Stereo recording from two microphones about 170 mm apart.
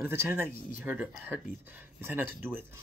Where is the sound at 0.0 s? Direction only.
15° right (ahead or behind).